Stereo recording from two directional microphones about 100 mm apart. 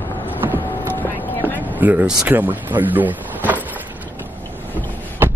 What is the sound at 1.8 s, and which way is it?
Speech, 15° right (ahead or behind).